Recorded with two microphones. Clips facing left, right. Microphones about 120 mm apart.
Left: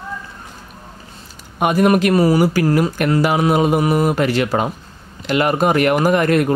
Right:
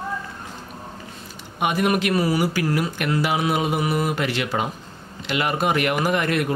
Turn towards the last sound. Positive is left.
turn(degrees=45)  # may be behind; listen again after turning